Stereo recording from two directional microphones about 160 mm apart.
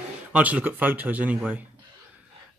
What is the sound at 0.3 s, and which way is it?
A man's voice, 10° right (ahead or behind).